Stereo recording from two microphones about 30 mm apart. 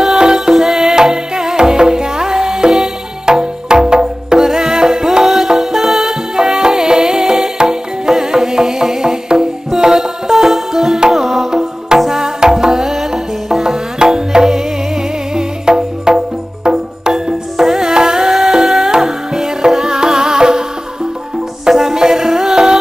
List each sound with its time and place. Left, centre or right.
0.3 s music: centre
0.9 s music: right
3.3 s music: right
5.2 s music: centre
12.1 s music: right
18.3 s music: centre